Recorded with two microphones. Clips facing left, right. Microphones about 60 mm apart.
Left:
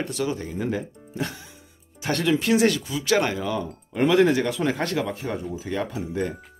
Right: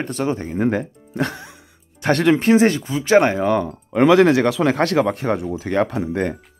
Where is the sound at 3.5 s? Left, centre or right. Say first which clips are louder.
Right 9 dB; right.